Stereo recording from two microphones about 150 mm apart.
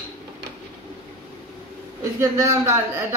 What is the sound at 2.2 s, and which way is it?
Speech, 20° right (ahead or behind).